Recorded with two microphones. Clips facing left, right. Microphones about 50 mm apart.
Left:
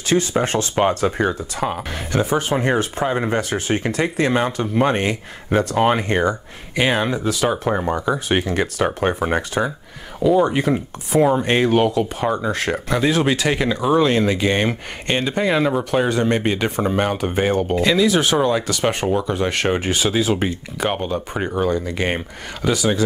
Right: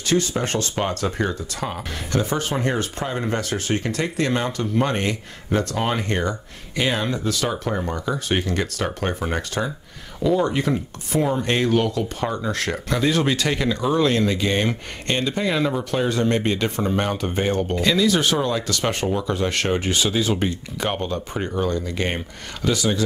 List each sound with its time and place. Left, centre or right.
0.0 s speech: centre
7.1 s speech: centre